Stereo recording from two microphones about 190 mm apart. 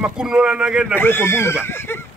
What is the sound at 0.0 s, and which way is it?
Speech, 5° right (ahead or behind).